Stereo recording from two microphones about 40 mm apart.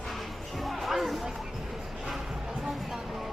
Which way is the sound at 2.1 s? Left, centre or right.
Centre.